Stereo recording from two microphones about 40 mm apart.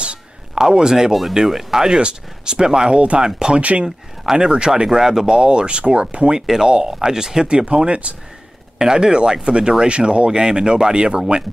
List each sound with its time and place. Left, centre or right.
0.6 s speech: centre
1.9 s speech: right
3.5 s speech: right
3.8 s speech: centre
6.4 s speech: centre
7.4 s speech: right
8.7 s speech: centre